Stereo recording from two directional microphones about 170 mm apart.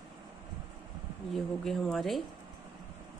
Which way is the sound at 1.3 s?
Centre (ahead or behind).